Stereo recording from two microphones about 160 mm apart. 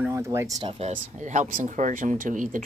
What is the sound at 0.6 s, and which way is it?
Speech, 40° right (ahead or behind).